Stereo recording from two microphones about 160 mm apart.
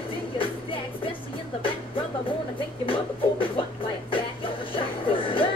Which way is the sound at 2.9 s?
35° left (ahead or behind).